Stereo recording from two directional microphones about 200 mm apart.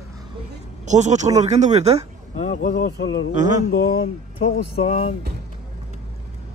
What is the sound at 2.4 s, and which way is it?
Speech, 40° left (ahead or behind).